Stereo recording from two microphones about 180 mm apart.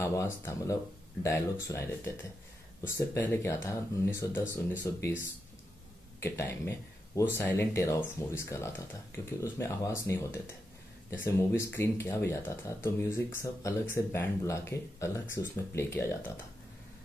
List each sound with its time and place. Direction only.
0.0 s speech: 15° left (ahead or behind)